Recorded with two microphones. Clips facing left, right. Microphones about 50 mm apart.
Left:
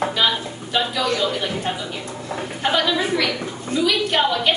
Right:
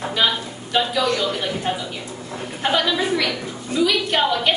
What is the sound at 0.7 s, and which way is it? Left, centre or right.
Speech, centre.